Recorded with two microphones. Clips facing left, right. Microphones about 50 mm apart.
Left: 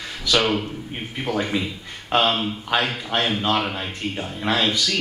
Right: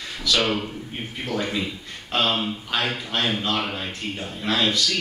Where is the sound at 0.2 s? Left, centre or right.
Left.